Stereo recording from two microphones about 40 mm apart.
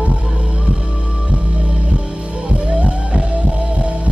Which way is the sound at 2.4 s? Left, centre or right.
Right.